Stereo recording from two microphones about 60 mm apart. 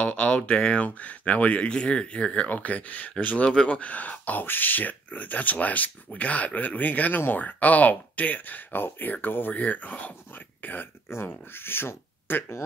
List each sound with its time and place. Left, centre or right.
0.0 s speech: left
11.1 s speech: left